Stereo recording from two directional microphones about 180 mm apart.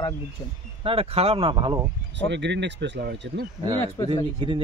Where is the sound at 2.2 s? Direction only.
75° right (ahead or behind).